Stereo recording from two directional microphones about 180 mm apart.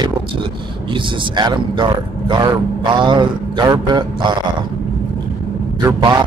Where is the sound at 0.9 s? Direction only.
25° right (ahead or behind).